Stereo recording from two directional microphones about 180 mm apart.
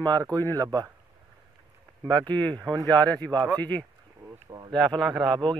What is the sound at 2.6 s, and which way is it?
Speech, 20° right (ahead or behind).